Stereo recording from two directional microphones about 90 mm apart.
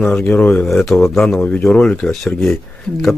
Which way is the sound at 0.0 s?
15° left (ahead or behind).